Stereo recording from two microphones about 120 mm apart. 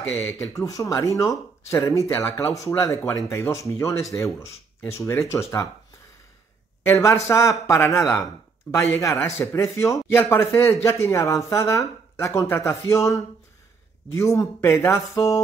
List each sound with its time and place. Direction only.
0.2 s a man's voice: 20° left (ahead or behind)
6.8 s a man's voice: 25° left (ahead or behind)